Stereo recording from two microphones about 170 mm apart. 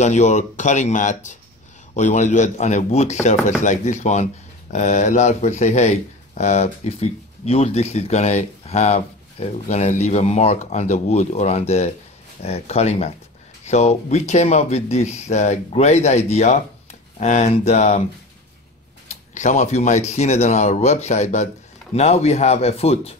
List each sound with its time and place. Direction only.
0.0 s speech: 45° left (ahead or behind)
19.0 s speech: 45° left (ahead or behind)